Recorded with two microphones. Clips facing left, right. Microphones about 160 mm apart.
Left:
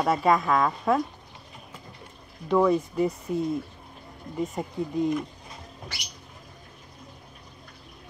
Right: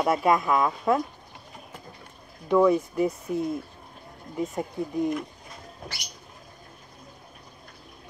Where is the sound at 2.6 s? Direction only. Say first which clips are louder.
Right 1 dB; 5° right (ahead or behind).